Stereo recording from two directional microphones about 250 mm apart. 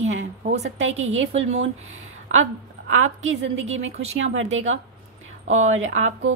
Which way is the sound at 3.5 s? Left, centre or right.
Right.